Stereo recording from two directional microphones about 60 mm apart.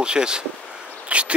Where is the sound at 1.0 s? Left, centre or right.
Right.